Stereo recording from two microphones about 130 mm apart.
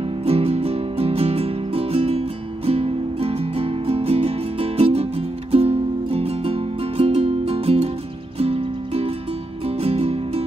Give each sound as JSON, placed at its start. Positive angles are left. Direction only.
{"t": 0.2, "sound": "music", "side_deg": -50}